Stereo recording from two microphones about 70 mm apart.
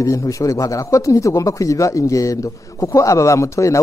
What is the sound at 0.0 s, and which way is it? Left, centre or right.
Speech, left.